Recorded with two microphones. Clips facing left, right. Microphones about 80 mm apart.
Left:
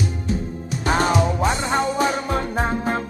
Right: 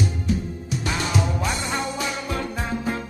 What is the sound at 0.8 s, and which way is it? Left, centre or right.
Music, left.